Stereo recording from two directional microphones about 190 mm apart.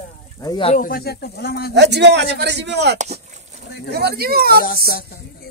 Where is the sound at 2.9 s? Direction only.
35° right (ahead or behind).